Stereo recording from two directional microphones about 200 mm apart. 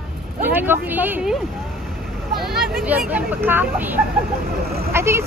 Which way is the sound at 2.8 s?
5° right (ahead or behind).